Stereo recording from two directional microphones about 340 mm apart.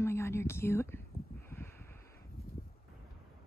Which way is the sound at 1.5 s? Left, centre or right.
Centre.